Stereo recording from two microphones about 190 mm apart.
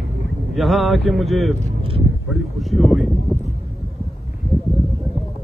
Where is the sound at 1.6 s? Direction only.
30° right (ahead or behind).